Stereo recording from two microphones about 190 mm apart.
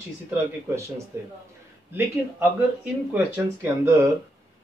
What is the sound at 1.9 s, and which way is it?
Speech, 10° right (ahead or behind).